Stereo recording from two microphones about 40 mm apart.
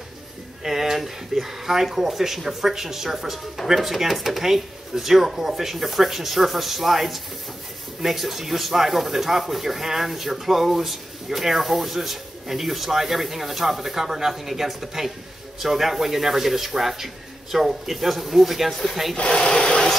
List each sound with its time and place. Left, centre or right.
0.7 s speech: centre
19.1 s rub: left